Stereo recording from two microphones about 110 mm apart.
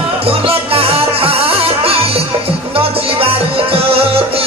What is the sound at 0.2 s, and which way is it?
Music, 60° right (ahead or behind).